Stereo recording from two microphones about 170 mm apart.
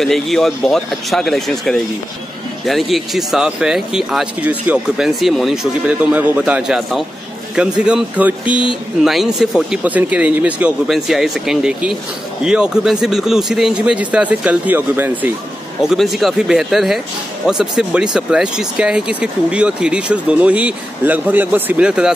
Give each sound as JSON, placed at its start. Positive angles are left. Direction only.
{"t": 0.0, "sound": "speech", "side_deg": 0}